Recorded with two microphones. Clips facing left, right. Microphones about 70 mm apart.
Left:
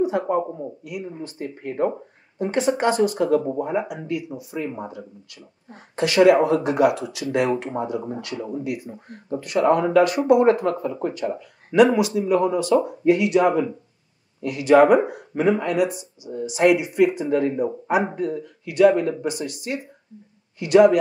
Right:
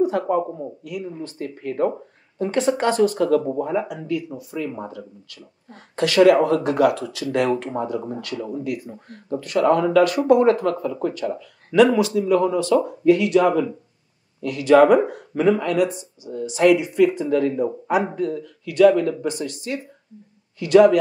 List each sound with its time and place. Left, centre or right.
0.2 s speech: left
0.5 s speech: centre
0.8 s speech: centre
20.5 s speech: centre